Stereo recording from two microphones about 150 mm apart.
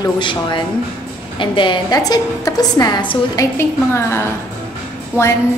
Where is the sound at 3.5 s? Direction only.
15° left (ahead or behind).